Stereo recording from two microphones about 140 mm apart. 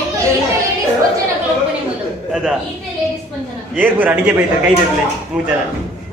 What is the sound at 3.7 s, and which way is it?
Speech, 10° right (ahead or behind).